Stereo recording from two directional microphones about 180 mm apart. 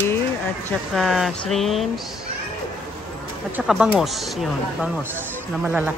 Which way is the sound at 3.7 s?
5° right (ahead or behind).